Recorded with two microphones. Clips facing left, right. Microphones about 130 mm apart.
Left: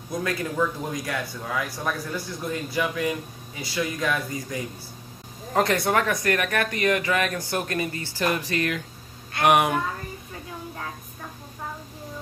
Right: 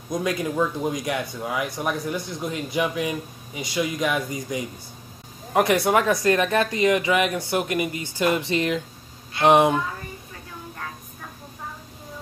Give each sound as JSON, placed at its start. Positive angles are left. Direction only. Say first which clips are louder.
{"t": 0.1, "sound": "speech", "louder": "right 3 dB", "side_deg": -15}